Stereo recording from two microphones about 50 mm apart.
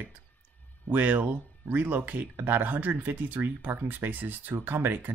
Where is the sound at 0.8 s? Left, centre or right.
Right.